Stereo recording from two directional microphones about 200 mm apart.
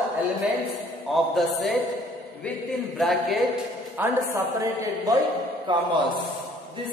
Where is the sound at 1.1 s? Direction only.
Centre (ahead or behind).